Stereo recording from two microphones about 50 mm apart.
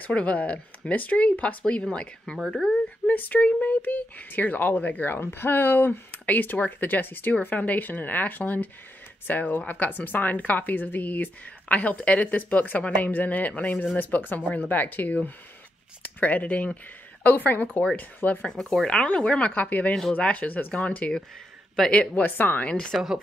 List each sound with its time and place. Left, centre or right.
0.0 s speech: left
3.1 s speech: left
5.1 s speech: left
18.5 s speech: centre
18.9 s speech: left
19.9 s speech: centre
20.2 s speech: left
22.1 s speech: left
22.7 s speech: centre